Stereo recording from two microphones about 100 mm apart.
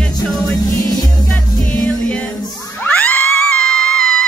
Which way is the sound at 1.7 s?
10° left (ahead or behind).